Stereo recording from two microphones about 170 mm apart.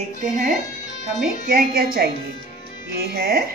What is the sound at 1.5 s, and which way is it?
A woman's voice, 60° right (ahead or behind).